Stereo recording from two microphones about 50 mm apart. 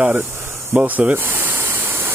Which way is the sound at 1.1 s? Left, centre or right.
Right.